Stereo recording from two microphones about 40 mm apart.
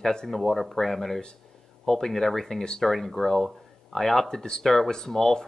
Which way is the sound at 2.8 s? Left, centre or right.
Centre.